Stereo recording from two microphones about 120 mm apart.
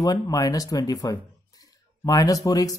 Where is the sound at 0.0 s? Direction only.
30° left (ahead or behind).